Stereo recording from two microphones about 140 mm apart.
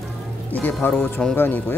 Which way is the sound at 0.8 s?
15° left (ahead or behind).